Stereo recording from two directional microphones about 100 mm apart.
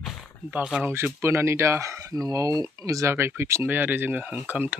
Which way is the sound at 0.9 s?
25° right (ahead or behind).